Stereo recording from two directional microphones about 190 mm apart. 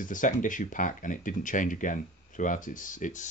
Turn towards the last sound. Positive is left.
turn(degrees=40)  # may be behind; listen again after turning